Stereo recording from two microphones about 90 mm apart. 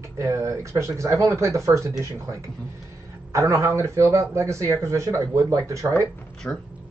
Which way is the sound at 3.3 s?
35° right (ahead or behind).